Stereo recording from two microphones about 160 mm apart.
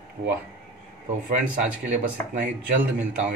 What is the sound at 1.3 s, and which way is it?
Speech, 60° right (ahead or behind).